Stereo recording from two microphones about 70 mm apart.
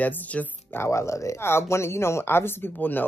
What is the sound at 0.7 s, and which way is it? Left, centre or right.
Speech, left.